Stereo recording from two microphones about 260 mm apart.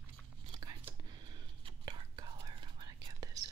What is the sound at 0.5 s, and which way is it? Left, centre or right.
Whispering, centre.